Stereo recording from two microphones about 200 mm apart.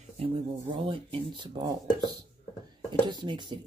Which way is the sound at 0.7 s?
25° right (ahead or behind).